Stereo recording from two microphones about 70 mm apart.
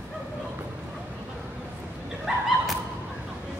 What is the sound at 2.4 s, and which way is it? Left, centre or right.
Thump, centre.